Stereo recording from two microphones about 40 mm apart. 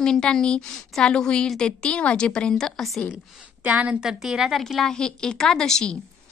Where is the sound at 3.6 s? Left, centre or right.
Right.